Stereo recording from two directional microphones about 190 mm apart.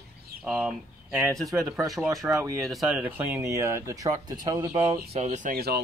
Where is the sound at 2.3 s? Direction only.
15° right (ahead or behind).